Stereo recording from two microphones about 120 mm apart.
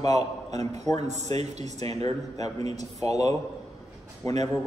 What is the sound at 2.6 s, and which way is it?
Speech, 70° right (ahead or behind).